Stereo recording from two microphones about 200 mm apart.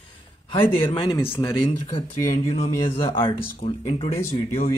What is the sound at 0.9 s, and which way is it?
Speech, 20° left (ahead or behind).